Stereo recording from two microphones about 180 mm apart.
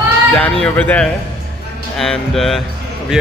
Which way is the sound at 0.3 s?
10° left (ahead or behind).